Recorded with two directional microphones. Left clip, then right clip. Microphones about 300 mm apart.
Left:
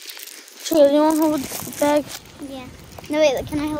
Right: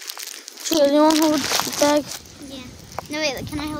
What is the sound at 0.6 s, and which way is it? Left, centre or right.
A child's voice, centre.